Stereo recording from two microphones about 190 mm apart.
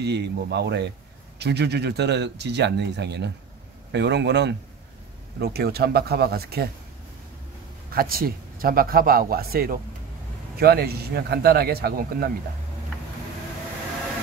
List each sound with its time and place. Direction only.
0.0 s speech: 65° right (ahead or behind)
7.9 s speech: 50° right (ahead or behind)